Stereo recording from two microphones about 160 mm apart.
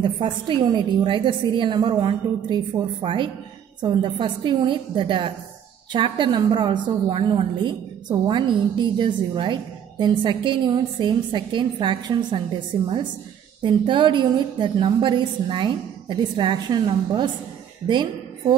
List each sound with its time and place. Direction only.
0.0 s a woman's voice: 30° right (ahead or behind)